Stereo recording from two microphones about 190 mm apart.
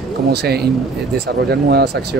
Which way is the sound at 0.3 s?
60° right (ahead or behind).